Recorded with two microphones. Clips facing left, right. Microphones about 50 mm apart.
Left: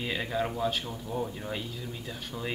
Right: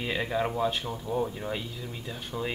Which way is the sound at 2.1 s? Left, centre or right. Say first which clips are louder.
Right 3 dB; centre.